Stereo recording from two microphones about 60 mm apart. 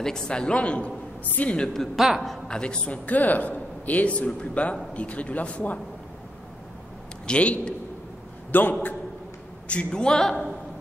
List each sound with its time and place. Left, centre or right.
0.0 s a woman's voice: centre
2.0 s a man's voice: centre
2.4 s a man's voice: centre
7.2 s a man's voice: left
8.5 s a man's voice: left
9.7 s a woman's voice: centre